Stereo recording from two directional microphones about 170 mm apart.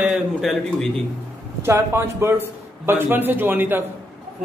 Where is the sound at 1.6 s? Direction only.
15° right (ahead or behind).